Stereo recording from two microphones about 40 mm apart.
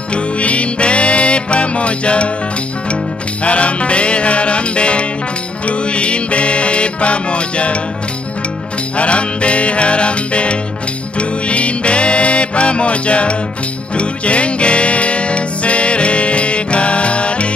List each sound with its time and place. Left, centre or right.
0.1 s music: left
3.4 s music: left
8.9 s music: left